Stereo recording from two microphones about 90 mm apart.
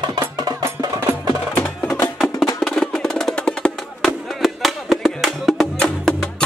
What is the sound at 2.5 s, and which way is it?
Music, 5° left (ahead or behind).